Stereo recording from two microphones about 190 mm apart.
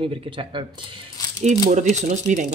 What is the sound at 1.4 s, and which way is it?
Speech, 40° right (ahead or behind).